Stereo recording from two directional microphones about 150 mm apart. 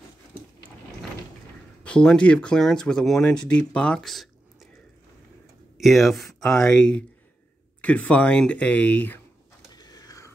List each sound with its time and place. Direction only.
1.9 s speech: 5° left (ahead or behind)
5.8 s speech: centre (ahead or behind)
9.7 s a sound: 25° left (ahead or behind)